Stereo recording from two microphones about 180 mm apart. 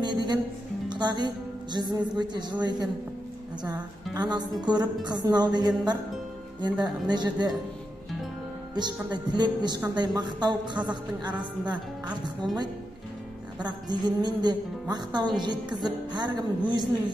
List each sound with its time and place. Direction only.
0.0 s speech: 25° right (ahead or behind)
3.6 s speech: 20° right (ahead or behind)
8.7 s speech: 25° right (ahead or behind)
13.7 s speech: 25° right (ahead or behind)